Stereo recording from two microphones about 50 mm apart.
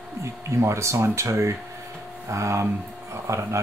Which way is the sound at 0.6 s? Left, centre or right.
Right.